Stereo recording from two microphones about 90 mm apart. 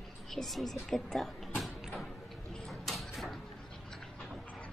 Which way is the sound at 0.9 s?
5° left (ahead or behind).